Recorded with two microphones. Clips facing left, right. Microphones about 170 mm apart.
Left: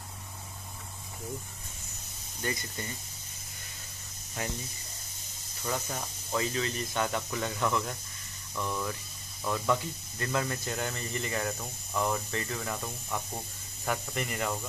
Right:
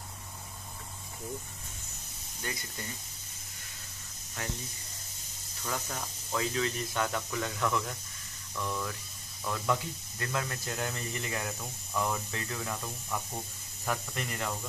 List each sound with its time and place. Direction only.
5.7 s speech: 10° left (ahead or behind)
6.5 s speech: centre (ahead or behind)